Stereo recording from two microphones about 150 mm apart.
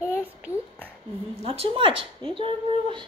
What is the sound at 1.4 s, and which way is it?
Speech, 40° right (ahead or behind).